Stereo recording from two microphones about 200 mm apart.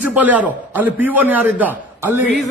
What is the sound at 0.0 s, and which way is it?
Speech, 5° right (ahead or behind).